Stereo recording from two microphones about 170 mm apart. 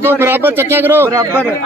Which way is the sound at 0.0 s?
15° right (ahead or behind).